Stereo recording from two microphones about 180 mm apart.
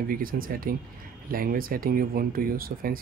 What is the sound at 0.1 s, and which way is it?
Speech, 50° right (ahead or behind).